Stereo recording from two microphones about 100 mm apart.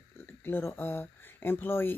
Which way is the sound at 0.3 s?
20° left (ahead or behind).